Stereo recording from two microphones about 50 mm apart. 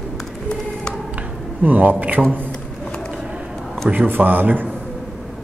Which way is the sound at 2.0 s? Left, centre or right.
Right.